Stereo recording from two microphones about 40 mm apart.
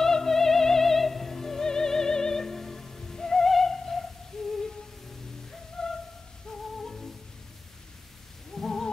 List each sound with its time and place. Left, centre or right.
0.0 s music: centre
5.8 s music: centre
8.5 s a sound: centre